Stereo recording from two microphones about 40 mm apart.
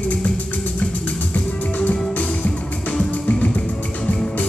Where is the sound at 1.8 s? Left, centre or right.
Left.